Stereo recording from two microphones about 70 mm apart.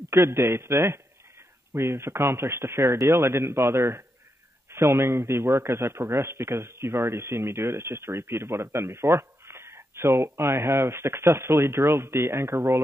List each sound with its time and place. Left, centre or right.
0.1 s a man's voice: right